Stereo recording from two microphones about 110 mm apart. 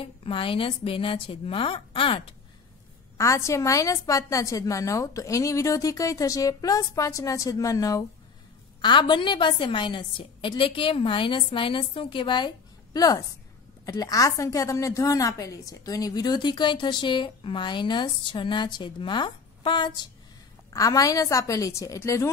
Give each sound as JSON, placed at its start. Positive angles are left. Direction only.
{"t": 0.0, "sound": "a woman's voice", "side_deg": 55}
{"t": 3.2, "sound": "a woman's voice", "side_deg": 30}
{"t": 8.8, "sound": "a woman's voice", "side_deg": 45}
{"t": 20.7, "sound": "a woman's voice", "side_deg": 30}